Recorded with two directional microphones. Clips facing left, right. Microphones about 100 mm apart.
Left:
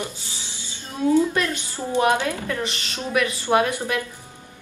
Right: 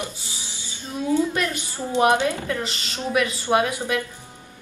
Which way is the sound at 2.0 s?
20° right (ahead or behind).